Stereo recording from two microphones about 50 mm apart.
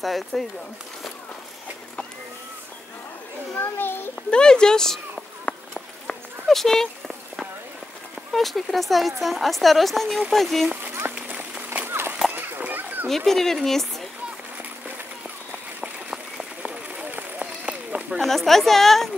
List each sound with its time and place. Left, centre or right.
0.0 s speech: centre
3.5 s a child's voice: left
4.3 s speech: centre
5.5 s clip-clop: centre
8.3 s speech: centre
10.8 s a sound: right
11.1 s run: right
11.9 s a sound: right
13.1 s speech: centre
15.8 s a sound: centre
17.0 s a sound: right
18.2 s speech: centre